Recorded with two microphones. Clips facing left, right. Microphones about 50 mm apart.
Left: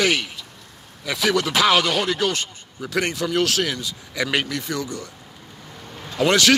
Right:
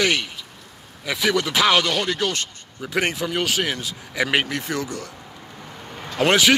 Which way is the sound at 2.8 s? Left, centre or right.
Right.